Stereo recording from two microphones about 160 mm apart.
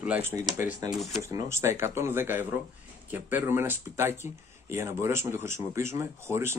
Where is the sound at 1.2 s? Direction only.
20° right (ahead or behind).